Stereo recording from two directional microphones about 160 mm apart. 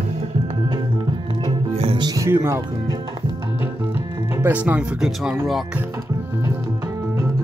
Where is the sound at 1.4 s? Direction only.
35° right (ahead or behind); by 2.6 s 15° right (ahead or behind).